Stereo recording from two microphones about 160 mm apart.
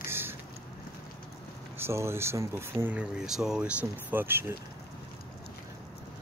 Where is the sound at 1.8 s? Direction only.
15° right (ahead or behind).